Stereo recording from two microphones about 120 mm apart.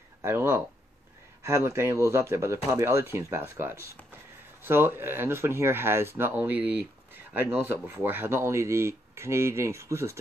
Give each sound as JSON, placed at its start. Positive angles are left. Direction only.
{"t": 0.2, "sound": "speech", "side_deg": -20}